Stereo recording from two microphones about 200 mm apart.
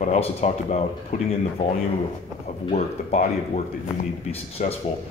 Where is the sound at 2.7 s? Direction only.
35° left (ahead or behind).